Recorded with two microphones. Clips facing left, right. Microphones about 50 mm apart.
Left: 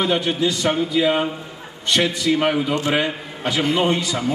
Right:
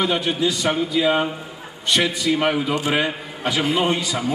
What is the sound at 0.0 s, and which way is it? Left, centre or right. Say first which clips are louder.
A man's voice: left 1 dB; centre.